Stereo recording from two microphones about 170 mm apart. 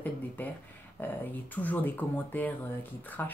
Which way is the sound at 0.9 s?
10° left (ahead or behind).